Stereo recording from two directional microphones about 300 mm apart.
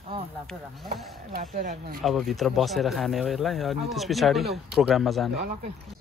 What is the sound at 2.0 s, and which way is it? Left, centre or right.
Speech, centre.